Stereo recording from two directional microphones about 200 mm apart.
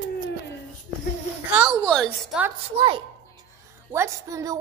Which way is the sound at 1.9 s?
5° left (ahead or behind).